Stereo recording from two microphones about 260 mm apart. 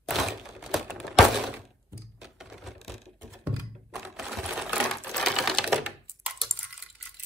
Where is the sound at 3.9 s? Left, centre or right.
Centre.